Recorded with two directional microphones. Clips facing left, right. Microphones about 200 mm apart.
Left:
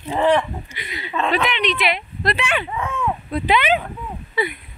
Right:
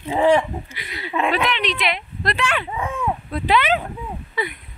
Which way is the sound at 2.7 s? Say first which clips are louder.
Even; 15° right (ahead or behind).